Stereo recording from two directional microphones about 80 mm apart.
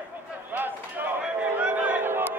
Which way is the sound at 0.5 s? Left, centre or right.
Right.